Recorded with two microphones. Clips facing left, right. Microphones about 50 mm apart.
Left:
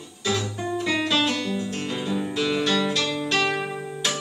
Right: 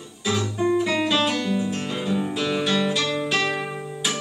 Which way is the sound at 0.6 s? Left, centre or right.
Centre.